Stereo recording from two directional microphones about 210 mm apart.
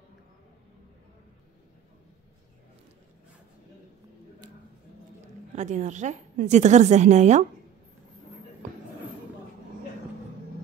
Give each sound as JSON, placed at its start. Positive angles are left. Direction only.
{"t": 5.6, "sound": "a woman's voice", "side_deg": -35}